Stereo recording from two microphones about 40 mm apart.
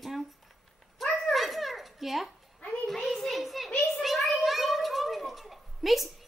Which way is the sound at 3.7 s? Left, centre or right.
Left.